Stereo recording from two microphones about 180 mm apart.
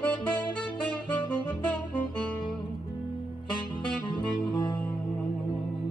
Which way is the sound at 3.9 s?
5° left (ahead or behind).